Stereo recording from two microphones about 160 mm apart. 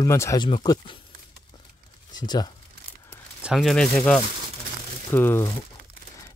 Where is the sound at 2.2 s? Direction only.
25° left (ahead or behind).